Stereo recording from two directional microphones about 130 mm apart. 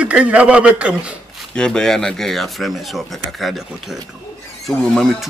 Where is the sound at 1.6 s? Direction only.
5° left (ahead or behind).